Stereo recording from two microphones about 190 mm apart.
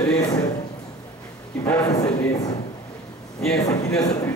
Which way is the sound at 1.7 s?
10° left (ahead or behind).